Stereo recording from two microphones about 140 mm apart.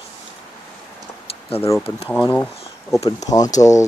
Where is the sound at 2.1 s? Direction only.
10° left (ahead or behind).